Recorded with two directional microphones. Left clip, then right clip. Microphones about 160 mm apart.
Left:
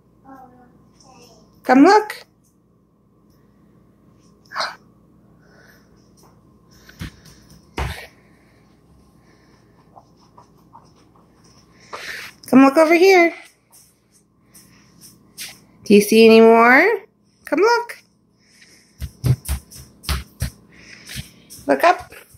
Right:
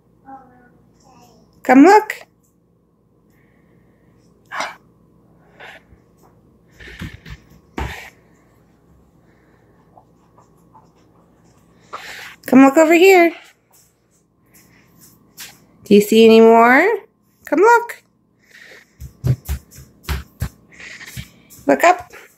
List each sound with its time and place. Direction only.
1.7 s speech: 30° right (ahead or behind)
11.9 s a sound: 10° right (ahead or behind)
15.8 s speech: 10° right (ahead or behind)
17.5 s speech: 25° right (ahead or behind)
20.7 s a sound: 5° right (ahead or behind)
21.6 s dog: 15° right (ahead or behind)